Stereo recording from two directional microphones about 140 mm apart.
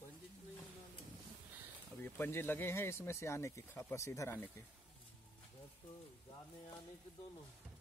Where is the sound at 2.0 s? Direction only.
15° left (ahead or behind).